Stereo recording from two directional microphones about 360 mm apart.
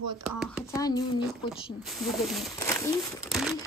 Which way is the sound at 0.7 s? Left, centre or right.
Centre.